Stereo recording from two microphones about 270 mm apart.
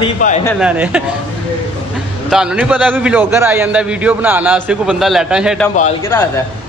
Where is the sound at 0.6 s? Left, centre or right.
Centre.